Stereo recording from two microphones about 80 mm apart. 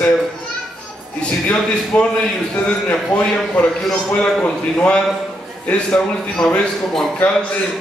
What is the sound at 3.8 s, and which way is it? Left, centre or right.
Speech, centre.